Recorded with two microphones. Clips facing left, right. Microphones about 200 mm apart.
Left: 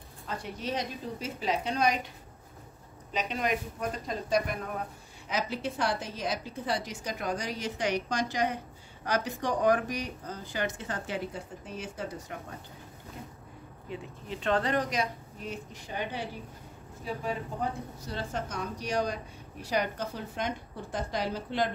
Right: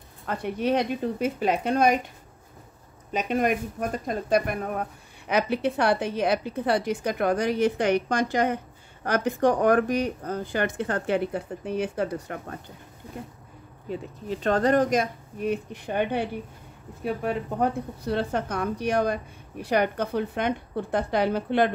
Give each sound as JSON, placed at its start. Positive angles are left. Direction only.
{"t": 0.3, "sound": "speech", "side_deg": -60}
{"t": 3.1, "sound": "speech", "side_deg": -50}
{"t": 13.8, "sound": "speech", "side_deg": -40}